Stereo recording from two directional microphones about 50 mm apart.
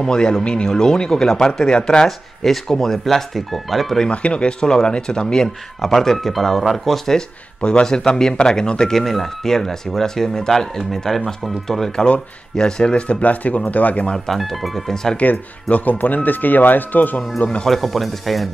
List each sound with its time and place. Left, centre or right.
0.0 s speech: centre
2.0 s speech: centre
4.1 s speech: left; by 7.0 s centre
7.6 s speech: centre
14.1 s speech: centre
15.1 s speech: left
17.4 s speech: left
17.6 s speech: centre